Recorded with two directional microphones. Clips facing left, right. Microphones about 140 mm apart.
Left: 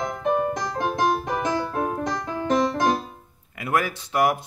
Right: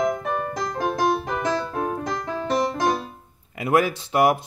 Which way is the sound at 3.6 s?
25° right (ahead or behind).